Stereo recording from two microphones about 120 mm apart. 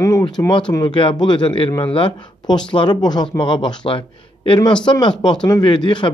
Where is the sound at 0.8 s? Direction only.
40° left (ahead or behind).